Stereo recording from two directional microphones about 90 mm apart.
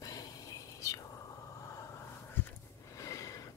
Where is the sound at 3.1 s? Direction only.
40° left (ahead or behind).